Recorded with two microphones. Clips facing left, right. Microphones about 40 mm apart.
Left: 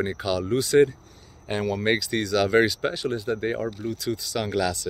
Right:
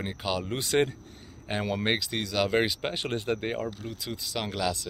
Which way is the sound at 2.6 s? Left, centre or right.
Right.